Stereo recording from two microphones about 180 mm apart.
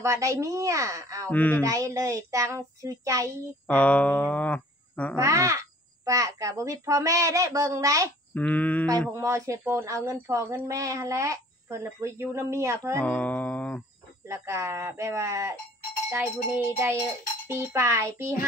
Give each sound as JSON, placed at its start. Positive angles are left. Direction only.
{"t": 0.0, "sound": "speech", "side_deg": -15}
{"t": 1.3, "sound": "music", "side_deg": 10}
{"t": 1.6, "sound": "a child's voice", "side_deg": -20}
{"t": 3.6, "sound": "speech", "side_deg": 10}
{"t": 5.1, "sound": "speech", "side_deg": -15}
{"t": 8.4, "sound": "music", "side_deg": 10}
{"t": 9.1, "sound": "speech", "side_deg": -15}
{"t": 13.0, "sound": "music", "side_deg": 10}
{"t": 14.2, "sound": "speech", "side_deg": -15}